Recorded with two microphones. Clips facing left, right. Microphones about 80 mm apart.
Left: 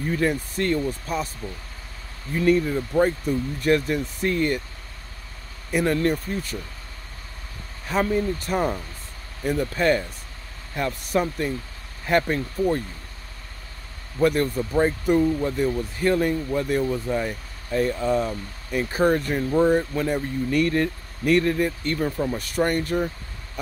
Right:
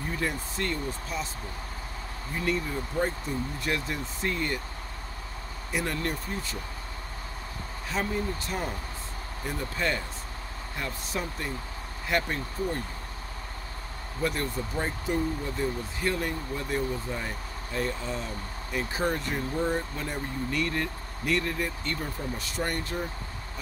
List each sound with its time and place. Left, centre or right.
0.1 s speech: left
2.3 s speech: left
5.7 s speech: left
7.9 s speech: left
8.5 s speech: left
9.4 s speech: left
12.1 s speech: left
14.2 s speech: left
17.7 s speech: left
19.5 s speech: left